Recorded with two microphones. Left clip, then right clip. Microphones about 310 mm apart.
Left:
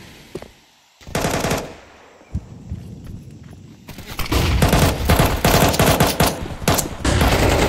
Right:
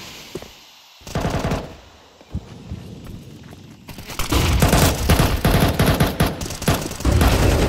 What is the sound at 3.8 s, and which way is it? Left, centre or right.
Fusillade, centre.